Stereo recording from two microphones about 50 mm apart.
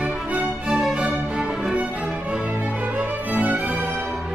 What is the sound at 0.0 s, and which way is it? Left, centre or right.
Music, right.